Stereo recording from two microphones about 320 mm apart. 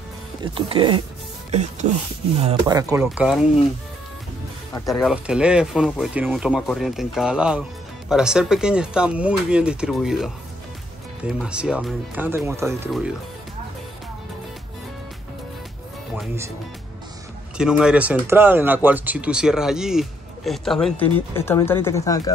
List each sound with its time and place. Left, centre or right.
0.4 s speech: centre
4.7 s speech: centre
17.6 s speech: centre